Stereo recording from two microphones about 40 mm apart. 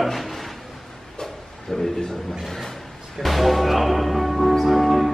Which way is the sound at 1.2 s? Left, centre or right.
Centre.